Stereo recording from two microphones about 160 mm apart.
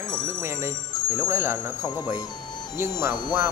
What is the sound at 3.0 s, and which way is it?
Speech, 15° right (ahead or behind).